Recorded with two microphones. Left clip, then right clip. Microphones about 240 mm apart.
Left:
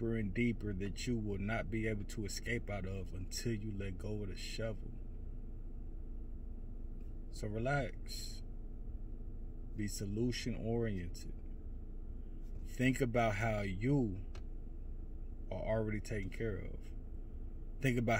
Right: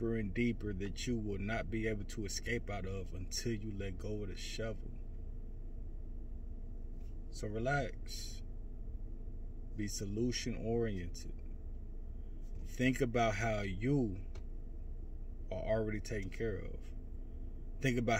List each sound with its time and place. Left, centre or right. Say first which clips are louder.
0.1 s speech: right 1 dB; left
7.5 s speech: right 1 dB; left
9.8 s speech: right 1 dB; left
12.7 s speech: right 1 dB; left
15.5 s speech: right 2 dB; left